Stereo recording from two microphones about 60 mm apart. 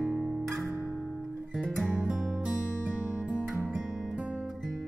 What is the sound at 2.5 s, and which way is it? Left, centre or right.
Music, centre.